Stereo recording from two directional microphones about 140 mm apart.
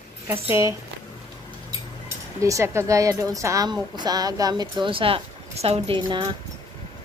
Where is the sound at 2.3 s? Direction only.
20° right (ahead or behind); by 6.0 s 45° right (ahead or behind).